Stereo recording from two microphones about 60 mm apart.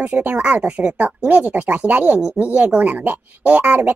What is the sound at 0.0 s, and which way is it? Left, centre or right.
Speech, right.